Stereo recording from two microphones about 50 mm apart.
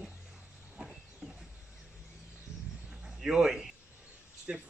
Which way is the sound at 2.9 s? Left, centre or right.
Centre.